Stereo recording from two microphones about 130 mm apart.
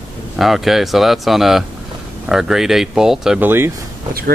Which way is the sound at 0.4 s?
Centre (ahead or behind).